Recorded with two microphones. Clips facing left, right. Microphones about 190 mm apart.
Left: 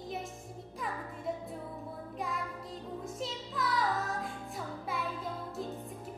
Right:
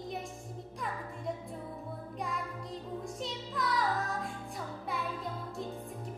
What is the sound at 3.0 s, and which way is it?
Music, centre (ahead or behind).